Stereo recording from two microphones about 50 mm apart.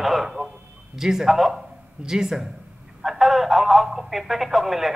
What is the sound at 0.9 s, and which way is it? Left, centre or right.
A man's voice, centre.